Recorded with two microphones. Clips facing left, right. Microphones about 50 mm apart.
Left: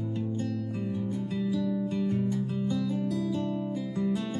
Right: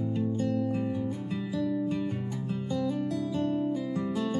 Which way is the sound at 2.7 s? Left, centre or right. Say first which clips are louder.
Right 3 dB; centre.